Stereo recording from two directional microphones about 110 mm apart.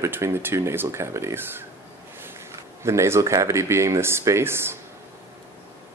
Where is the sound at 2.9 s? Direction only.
25° right (ahead or behind).